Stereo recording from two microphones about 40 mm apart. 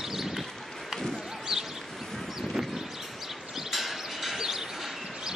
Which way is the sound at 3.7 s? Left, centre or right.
Centre.